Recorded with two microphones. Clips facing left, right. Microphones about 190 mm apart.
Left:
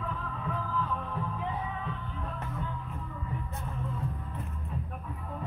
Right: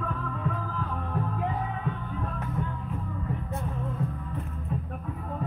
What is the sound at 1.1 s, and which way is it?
Music, 50° right (ahead or behind).